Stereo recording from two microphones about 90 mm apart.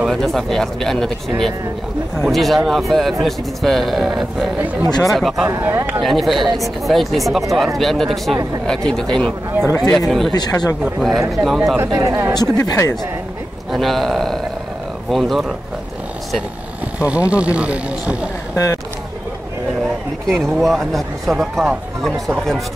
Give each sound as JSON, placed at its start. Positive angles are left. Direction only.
{"t": 0.0, "sound": "speech", "side_deg": 0}
{"t": 2.3, "sound": "speech", "side_deg": 0}
{"t": 5.6, "sound": "speech", "side_deg": -25}
{"t": 5.9, "sound": "speech", "side_deg": 0}
{"t": 11.8, "sound": "speech", "side_deg": -30}
{"t": 12.5, "sound": "speech", "side_deg": 35}
{"t": 13.7, "sound": "speech", "side_deg": 0}
{"t": 17.3, "sound": "speech", "side_deg": -15}
{"t": 18.5, "sound": "speech", "side_deg": 35}
{"t": 20.2, "sound": "speech", "side_deg": 0}